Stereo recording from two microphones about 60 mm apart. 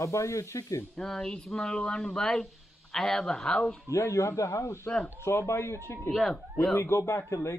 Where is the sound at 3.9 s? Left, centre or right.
Left.